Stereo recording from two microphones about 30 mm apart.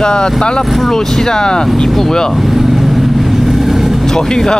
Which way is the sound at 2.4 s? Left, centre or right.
Centre.